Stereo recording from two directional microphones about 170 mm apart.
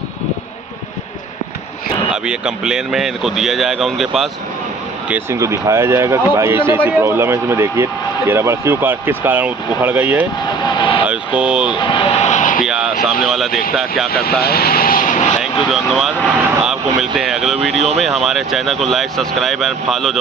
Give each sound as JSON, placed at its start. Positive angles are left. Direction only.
{"t": 2.2, "sound": "speech", "side_deg": -5}
{"t": 5.1, "sound": "speech", "side_deg": -15}
{"t": 10.6, "sound": "speech", "side_deg": 30}
{"t": 11.1, "sound": "speech", "side_deg": -5}
{"t": 11.7, "sound": "vehicle", "side_deg": 30}
{"t": 12.6, "sound": "speech", "side_deg": -5}
{"t": 14.4, "sound": "vehicle", "side_deg": 65}
{"t": 15.4, "sound": "speech", "side_deg": 0}
{"t": 16.6, "sound": "a sound", "side_deg": 0}
{"t": 17.6, "sound": "speech", "side_deg": 0}